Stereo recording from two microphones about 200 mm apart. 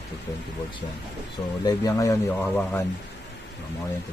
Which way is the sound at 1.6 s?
15° left (ahead or behind).